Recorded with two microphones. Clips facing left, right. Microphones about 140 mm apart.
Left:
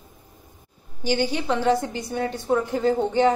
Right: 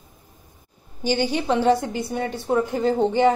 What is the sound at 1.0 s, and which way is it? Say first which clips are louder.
A woman's voice: right 2 dB; 15° right (ahead or behind).